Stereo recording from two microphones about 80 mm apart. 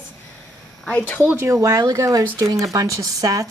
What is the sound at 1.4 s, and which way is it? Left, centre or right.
Speech, right.